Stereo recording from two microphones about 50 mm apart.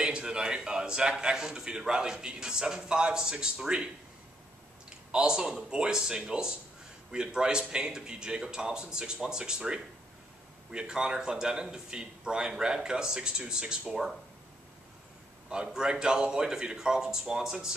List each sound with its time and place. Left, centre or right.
0.0 s a man's voice: centre
15.5 s speech: centre